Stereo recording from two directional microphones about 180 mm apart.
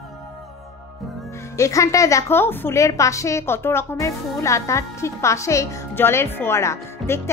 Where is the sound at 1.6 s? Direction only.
15° left (ahead or behind).